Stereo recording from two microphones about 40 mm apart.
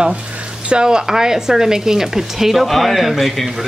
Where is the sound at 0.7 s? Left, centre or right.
Right.